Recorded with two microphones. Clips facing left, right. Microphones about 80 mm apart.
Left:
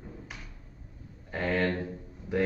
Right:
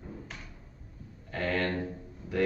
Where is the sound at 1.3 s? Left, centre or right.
Centre.